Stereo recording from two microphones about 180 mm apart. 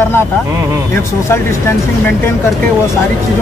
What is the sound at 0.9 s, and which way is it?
Speech, 15° left (ahead or behind).